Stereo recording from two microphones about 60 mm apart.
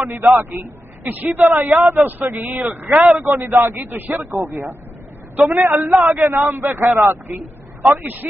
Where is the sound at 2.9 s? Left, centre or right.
Centre.